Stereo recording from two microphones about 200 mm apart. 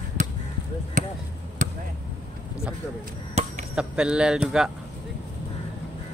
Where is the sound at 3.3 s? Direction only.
35° right (ahead or behind).